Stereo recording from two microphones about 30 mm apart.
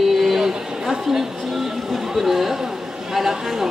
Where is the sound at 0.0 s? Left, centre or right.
Centre.